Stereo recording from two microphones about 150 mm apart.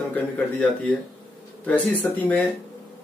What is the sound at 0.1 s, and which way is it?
Speech, 10° left (ahead or behind).